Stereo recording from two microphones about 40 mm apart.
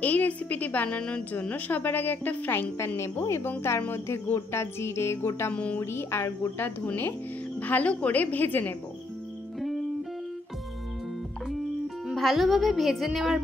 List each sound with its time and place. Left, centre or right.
0.0 s a woman's voice: left
0.8 s a woman's voice: left
1.5 s a woman's voice: left
3.2 s a woman's voice: left
3.9 s music: left
5.5 s a woman's voice: left
5.8 s music: left
7.6 s a woman's voice: left
9.6 s music: centre
12.2 s a woman's voice: centre